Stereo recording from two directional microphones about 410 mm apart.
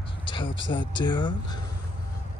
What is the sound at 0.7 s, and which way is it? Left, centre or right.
Speech, centre.